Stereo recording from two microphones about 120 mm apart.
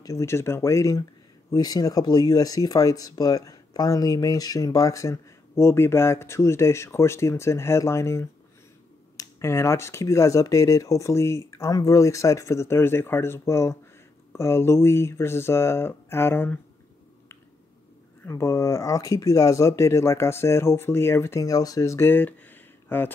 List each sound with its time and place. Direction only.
0.0 s speech: 25° left (ahead or behind)
18.2 s speech: 25° left (ahead or behind)